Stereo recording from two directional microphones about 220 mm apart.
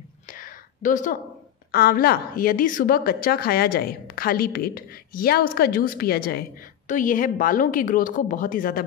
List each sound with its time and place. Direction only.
0.3 s whispering: 40° left (ahead or behind)
1.7 s a woman's voice: 45° left (ahead or behind)